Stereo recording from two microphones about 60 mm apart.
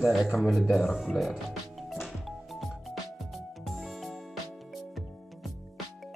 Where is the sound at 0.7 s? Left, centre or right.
Centre.